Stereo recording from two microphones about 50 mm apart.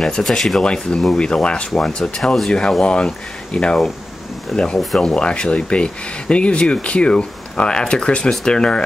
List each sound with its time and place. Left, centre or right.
0.2 s speech: centre
0.6 s speech: centre
4.5 s speech: centre
5.0 s speech: centre